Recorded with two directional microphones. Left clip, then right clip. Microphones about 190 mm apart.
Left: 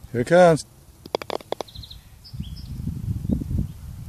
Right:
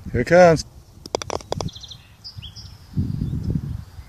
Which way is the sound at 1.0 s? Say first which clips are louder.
Right 1 dB; 5° left (ahead or behind).